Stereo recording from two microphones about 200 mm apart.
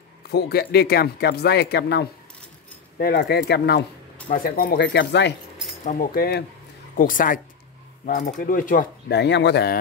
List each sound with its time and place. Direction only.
0.3 s speech: 55° left (ahead or behind)
4.3 s speech: 45° left (ahead or behind); by 5.3 s 60° left (ahead or behind)
5.9 s speech: 45° left (ahead or behind)